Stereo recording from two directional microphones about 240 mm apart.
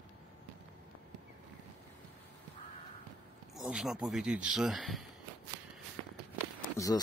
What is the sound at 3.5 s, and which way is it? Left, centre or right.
Speech, centre.